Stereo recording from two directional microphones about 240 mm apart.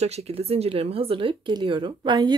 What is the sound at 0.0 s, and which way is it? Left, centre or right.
Speech, right.